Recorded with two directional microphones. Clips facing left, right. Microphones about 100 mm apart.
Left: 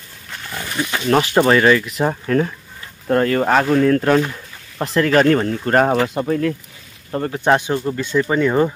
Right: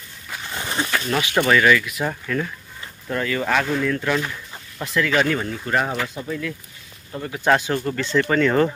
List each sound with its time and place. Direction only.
0.5 s wild animals: 25° right (ahead or behind)
1.0 s speech: 40° left (ahead or behind)
7.3 s speech: 20° left (ahead or behind)